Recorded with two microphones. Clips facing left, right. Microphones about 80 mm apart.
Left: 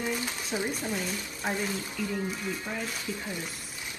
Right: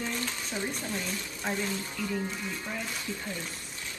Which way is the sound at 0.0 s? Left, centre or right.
Centre.